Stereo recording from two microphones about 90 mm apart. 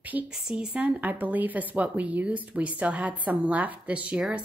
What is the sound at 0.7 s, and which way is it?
Speech, 15° right (ahead or behind).